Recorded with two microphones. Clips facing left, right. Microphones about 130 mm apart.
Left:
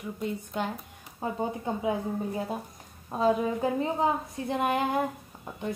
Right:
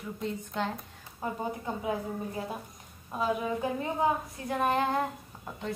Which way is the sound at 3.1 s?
30° left (ahead or behind).